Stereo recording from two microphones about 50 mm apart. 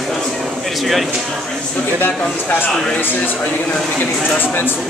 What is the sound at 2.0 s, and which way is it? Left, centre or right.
Speech, left.